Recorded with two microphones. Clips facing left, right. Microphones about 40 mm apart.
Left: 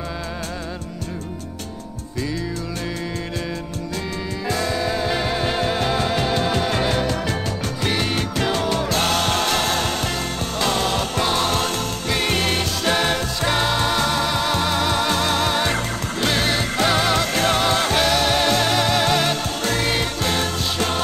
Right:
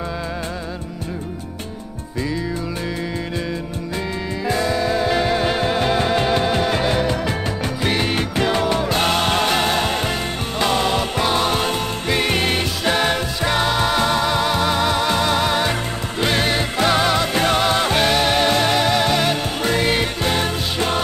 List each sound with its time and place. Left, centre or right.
4.5 s music: centre